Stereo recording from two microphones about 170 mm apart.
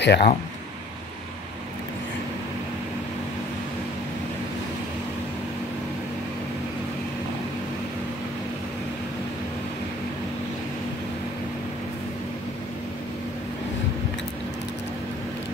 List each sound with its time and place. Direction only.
0.0 s speech: 80° left